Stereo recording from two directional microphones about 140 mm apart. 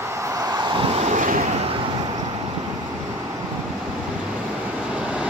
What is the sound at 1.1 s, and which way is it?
Vehicle, 65° right (ahead or behind).